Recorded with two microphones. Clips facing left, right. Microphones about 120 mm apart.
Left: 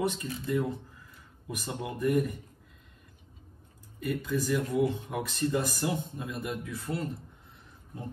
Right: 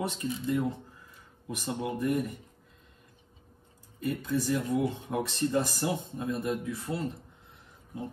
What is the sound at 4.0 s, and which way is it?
Speech, 30° right (ahead or behind).